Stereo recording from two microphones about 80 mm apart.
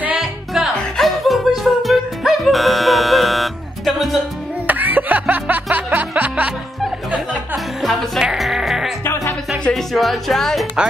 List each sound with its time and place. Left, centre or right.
0.2 s music: centre
4.6 s music: right
7.5 s music: centre
9.7 s speech: centre